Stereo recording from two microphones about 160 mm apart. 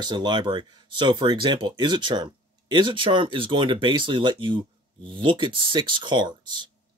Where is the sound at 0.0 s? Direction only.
30° right (ahead or behind).